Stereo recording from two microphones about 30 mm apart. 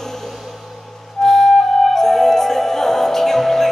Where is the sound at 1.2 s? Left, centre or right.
Centre.